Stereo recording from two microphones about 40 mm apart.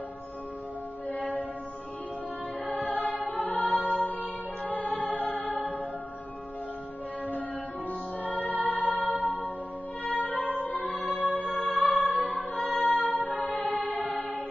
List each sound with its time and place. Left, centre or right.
1.0 s music: left
2.6 s choir: left
4.0 s music: left
8.2 s music: left
12.4 s choir: left